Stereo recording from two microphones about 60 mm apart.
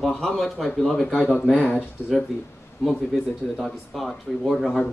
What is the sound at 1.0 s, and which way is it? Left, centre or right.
Speech, centre.